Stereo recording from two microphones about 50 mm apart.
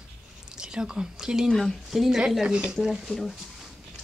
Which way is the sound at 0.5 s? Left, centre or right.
Centre.